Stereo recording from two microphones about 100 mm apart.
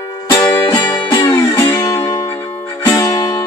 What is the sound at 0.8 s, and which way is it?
Music, 30° left (ahead or behind).